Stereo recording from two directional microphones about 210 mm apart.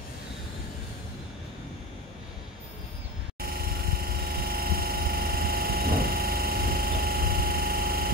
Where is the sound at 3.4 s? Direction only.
45° right (ahead or behind).